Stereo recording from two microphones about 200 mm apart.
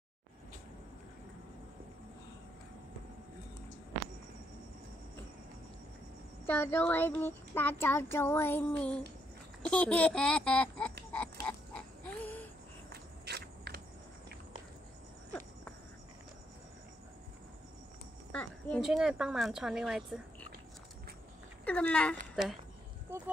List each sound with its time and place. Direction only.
6.4 s speech: 10° left (ahead or behind)
11.4 s pig: 5° left (ahead or behind)
12.9 s walk: 55° right (ahead or behind)
18.3 s a woman's voice: 5° left (ahead or behind)
21.6 s speech: 5° left (ahead or behind)